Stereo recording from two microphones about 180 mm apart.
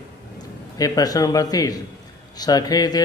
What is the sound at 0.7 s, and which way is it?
A man's voice, 20° left (ahead or behind).